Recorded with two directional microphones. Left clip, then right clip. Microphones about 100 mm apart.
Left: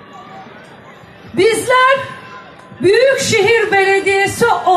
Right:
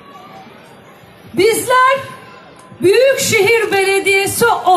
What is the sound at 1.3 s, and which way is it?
A woman's voice, 25° right (ahead or behind).